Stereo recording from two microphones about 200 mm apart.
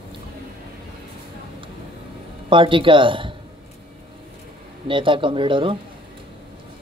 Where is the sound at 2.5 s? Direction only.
25° right (ahead or behind).